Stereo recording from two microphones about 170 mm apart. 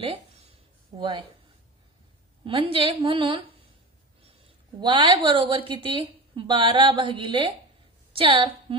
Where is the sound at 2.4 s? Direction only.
30° right (ahead or behind).